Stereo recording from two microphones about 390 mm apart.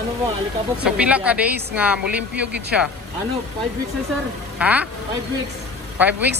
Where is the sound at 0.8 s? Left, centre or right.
Centre.